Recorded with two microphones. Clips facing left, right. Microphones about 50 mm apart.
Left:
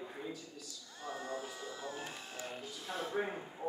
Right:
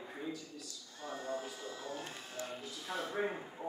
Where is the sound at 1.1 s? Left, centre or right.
Centre.